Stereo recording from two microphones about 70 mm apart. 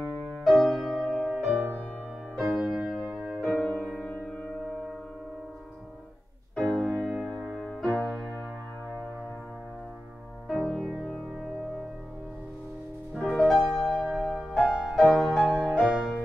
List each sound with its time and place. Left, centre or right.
0.3 s music: centre
1.5 s music: right
2.5 s music: centre
2.9 s music: centre
6.7 s music: centre
7.3 s music: centre
7.6 s music: centre
10.5 s music: centre
13.2 s music: centre
14.7 s music: centre